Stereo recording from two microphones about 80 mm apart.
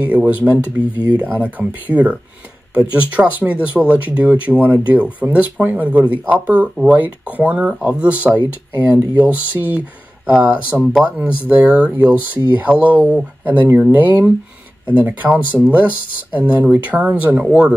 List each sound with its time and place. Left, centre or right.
0.0 s speech: centre